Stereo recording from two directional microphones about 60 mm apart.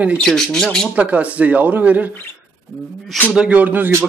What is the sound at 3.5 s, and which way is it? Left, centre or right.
Speech, right.